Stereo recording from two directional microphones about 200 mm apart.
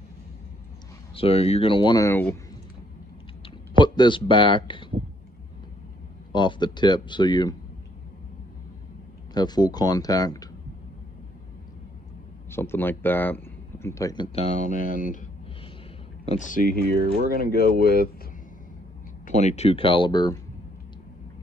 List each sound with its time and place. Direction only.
1.1 s speech: 30° left (ahead or behind); by 2.3 s 10° left (ahead or behind)
3.4 s speech: 25° left (ahead or behind)
6.3 s speech: 20° left (ahead or behind)
9.3 s speech: 20° left (ahead or behind)
12.4 s speech: 10° left (ahead or behind); by 15.2 s 40° left (ahead or behind)
16.3 s speech: 40° left (ahead or behind)
16.9 s speech: 30° right (ahead or behind)
17.4 s speech: 50° left (ahead or behind)
19.2 s speech: 35° left (ahead or behind)